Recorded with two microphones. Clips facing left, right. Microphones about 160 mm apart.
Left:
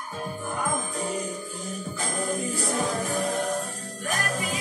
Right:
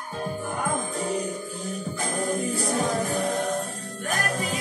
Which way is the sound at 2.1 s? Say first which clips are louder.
Right 2 dB; 35° right (ahead or behind).